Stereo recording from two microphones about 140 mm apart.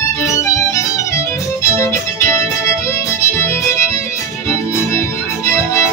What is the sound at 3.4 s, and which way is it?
Music, 20° left (ahead or behind).